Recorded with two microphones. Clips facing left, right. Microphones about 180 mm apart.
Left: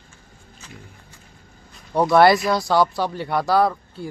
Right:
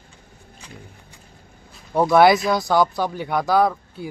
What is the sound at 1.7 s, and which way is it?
Speech, centre (ahead or behind).